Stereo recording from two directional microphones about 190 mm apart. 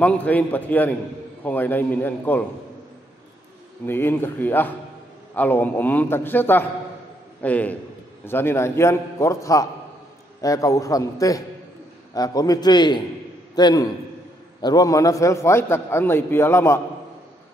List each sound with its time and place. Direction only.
0.0 s a man's voice: 5° left (ahead or behind)
3.8 s a man's voice: 10° left (ahead or behind)